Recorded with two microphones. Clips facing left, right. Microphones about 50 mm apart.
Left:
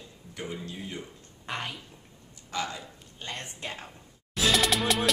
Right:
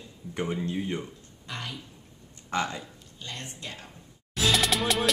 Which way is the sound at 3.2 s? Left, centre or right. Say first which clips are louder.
Left 2 dB; left.